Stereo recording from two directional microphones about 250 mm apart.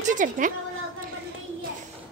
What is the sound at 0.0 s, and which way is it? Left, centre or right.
Speech, right.